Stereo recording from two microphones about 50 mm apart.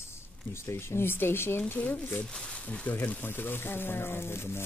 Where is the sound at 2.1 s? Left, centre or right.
Centre.